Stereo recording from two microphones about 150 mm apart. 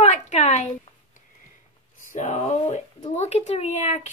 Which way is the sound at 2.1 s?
50° left (ahead or behind).